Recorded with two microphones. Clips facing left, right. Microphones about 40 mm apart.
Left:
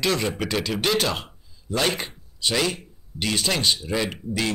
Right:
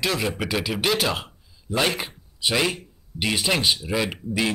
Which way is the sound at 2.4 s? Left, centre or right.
Centre.